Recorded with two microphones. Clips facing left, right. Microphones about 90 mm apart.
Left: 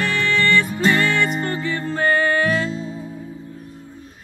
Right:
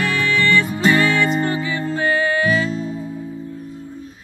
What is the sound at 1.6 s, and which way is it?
Music, 50° left (ahead or behind).